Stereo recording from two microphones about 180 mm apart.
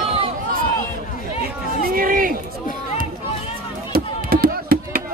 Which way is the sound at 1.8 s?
50° right (ahead or behind).